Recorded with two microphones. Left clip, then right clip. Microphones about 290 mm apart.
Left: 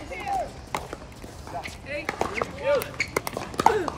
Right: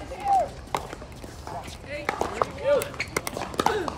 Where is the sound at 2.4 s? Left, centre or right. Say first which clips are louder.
Right 3 dB; right.